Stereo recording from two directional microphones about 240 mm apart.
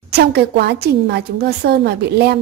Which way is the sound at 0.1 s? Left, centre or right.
Right.